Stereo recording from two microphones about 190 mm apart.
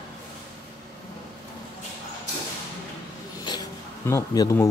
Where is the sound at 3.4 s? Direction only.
20° left (ahead or behind).